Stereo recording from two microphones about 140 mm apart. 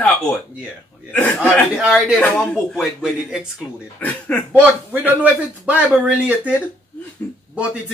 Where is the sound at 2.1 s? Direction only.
5° left (ahead or behind).